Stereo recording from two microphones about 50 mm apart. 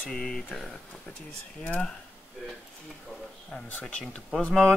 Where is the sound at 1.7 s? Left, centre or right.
Centre.